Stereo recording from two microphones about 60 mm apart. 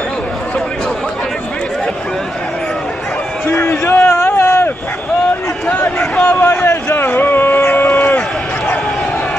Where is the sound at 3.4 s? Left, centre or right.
Left.